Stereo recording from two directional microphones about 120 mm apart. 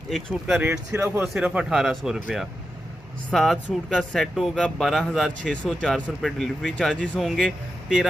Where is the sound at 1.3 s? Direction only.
5° right (ahead or behind).